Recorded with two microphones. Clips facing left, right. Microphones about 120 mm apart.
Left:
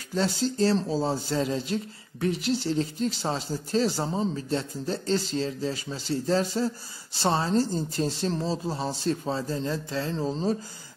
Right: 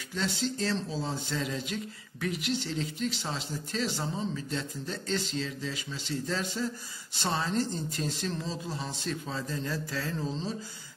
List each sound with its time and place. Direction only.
0.1 s speech: 40° left (ahead or behind)
10.2 s speech: 45° left (ahead or behind)